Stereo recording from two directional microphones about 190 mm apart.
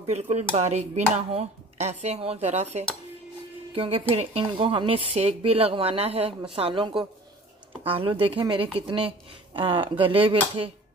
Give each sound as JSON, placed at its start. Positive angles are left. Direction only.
{"t": 0.0, "sound": "speech", "side_deg": -35}